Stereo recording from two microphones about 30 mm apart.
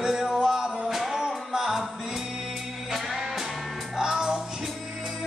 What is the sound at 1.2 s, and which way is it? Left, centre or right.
Music, centre.